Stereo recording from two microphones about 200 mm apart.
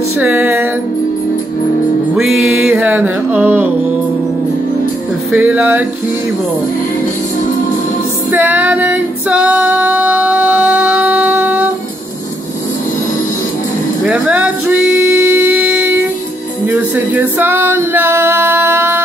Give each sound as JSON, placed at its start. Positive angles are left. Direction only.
{"t": 0.2, "sound": "music", "side_deg": -10}
{"t": 2.3, "sound": "music", "side_deg": -90}
{"t": 2.7, "sound": "a sound", "side_deg": -10}
{"t": 5.3, "sound": "speech", "side_deg": -10}
{"t": 8.3, "sound": "female singing", "side_deg": -10}
{"t": 14.0, "sound": "music", "side_deg": -5}